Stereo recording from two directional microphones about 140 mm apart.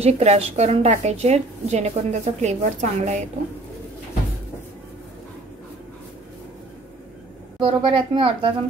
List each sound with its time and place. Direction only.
0.0 s a woman's voice: 50° right (ahead or behind)
7.6 s a woman's voice: 40° right (ahead or behind)